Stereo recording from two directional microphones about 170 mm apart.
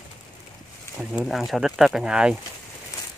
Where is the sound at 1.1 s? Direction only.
Centre (ahead or behind).